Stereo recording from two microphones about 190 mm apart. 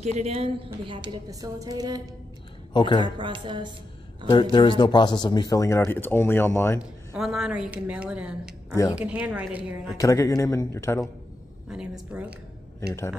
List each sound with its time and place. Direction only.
0.0 s a woman's voice: 35° right (ahead or behind)
2.7 s a man's voice: 25° left (ahead or behind)
3.0 s a woman's voice: 25° right (ahead or behind)
4.3 s a man's voice: 25° left (ahead or behind)
6.8 s a woman's voice: centre (ahead or behind)
9.9 s a man's voice: 15° left (ahead or behind)
11.7 s a woman's voice: 5° right (ahead or behind)